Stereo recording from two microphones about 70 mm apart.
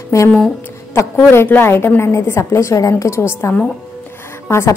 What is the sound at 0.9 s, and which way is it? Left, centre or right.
A woman's voice, left.